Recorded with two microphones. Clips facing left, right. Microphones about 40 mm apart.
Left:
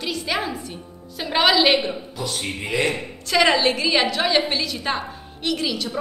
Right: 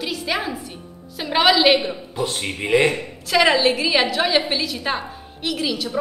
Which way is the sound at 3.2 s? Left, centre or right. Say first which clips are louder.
Right 1 dB; centre.